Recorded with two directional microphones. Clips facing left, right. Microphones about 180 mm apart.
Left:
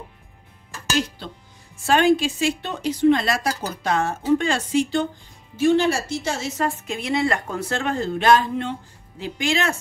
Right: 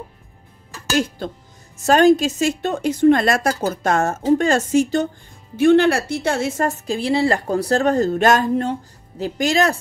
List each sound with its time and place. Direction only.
1.8 s a woman's voice: 40° right (ahead or behind)
5.6 s a woman's voice: 60° right (ahead or behind); by 9.8 s 40° right (ahead or behind)